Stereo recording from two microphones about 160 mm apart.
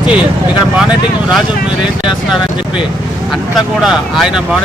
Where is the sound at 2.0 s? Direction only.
5° right (ahead or behind).